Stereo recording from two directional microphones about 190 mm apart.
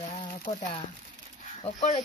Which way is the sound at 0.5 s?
30° left (ahead or behind).